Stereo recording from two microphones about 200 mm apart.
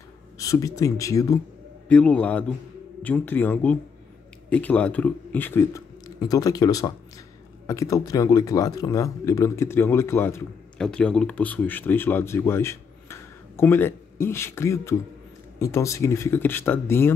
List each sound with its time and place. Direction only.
0.4 s speech: 15° left (ahead or behind)